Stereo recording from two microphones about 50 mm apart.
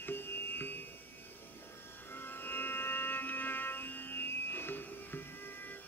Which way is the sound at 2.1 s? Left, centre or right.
Left.